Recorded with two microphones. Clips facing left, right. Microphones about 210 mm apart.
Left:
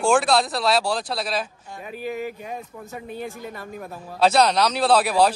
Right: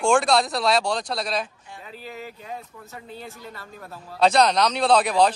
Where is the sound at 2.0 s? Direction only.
15° left (ahead or behind).